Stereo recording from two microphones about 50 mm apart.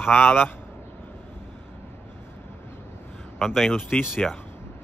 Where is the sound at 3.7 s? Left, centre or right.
Left.